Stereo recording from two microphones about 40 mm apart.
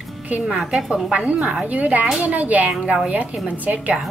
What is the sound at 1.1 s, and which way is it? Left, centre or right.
Speech, right.